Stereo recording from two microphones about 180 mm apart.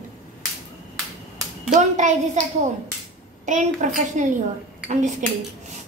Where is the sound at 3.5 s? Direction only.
45° right (ahead or behind).